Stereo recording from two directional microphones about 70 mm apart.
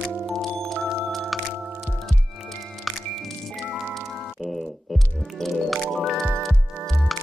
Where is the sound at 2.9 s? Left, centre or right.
Centre.